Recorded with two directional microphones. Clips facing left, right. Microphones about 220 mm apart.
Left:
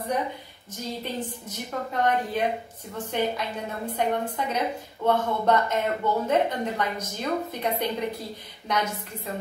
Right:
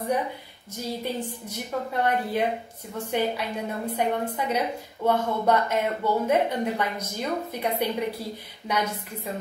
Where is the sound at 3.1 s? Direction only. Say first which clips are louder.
Right 1 dB; 10° right (ahead or behind).